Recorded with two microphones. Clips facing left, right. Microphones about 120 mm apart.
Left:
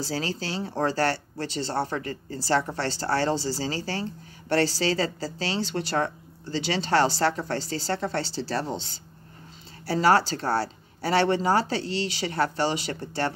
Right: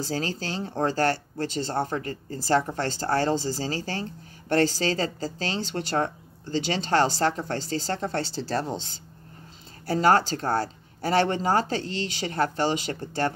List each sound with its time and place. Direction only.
0.0 s a woman's voice: 45° right (ahead or behind)